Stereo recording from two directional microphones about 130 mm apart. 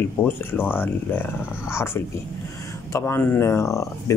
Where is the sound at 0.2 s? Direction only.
15° left (ahead or behind).